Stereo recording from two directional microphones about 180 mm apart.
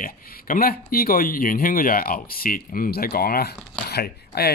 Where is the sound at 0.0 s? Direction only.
50° left (ahead or behind).